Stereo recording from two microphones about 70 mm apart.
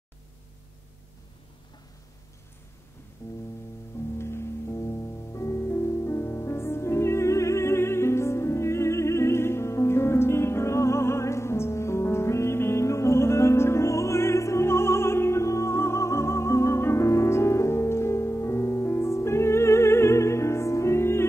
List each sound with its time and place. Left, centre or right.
4.2 s music: left